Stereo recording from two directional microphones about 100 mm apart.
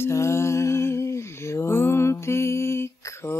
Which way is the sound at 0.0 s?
30° left (ahead or behind).